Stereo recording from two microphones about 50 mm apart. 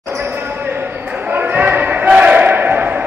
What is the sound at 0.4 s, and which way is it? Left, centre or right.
Basketball bounce, right.